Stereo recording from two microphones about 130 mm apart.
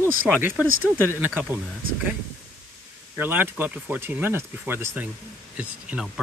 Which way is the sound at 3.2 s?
15° right (ahead or behind).